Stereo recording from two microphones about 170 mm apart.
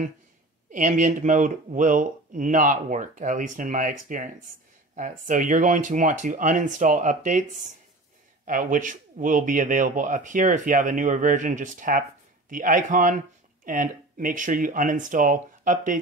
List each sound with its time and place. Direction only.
0.7 s speech: 50° right (ahead or behind)